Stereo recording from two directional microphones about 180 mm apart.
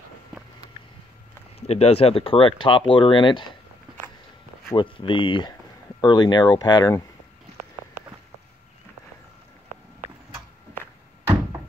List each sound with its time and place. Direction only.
1.7 s speech: 35° left (ahead or behind)
4.7 s speech: 30° left (ahead or behind)